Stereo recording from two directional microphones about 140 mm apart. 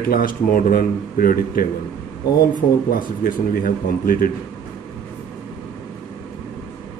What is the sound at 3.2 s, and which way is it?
A man's voice, 85° left.